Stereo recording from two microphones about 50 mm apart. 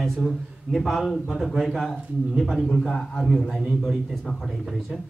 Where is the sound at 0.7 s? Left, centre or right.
Centre.